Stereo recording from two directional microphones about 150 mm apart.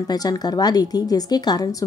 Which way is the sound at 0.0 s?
25° left (ahead or behind).